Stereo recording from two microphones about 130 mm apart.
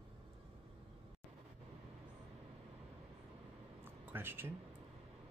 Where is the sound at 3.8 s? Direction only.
15° right (ahead or behind).